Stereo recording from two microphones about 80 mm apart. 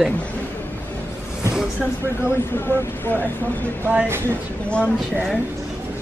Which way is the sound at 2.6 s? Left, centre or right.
Left.